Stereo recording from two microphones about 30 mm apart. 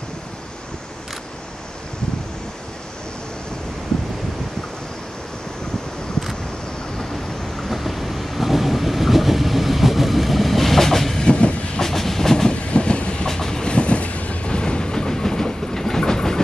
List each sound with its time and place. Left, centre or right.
7.6 s train: centre
11.1 s train: left
11.8 s train: centre
12.7 s train: left
13.3 s train: centre
13.7 s train: left
14.5 s train: left